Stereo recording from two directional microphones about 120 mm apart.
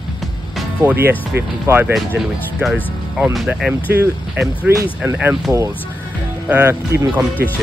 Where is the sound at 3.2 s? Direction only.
Centre (ahead or behind).